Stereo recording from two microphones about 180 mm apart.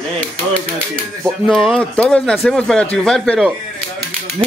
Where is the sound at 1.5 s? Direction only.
Centre (ahead or behind).